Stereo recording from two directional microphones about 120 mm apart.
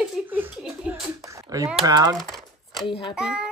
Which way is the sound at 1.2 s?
25° right (ahead or behind).